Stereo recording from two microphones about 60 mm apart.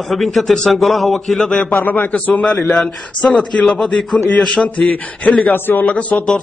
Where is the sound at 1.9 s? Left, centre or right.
Left.